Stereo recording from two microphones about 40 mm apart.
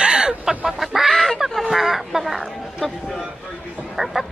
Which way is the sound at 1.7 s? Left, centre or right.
Centre.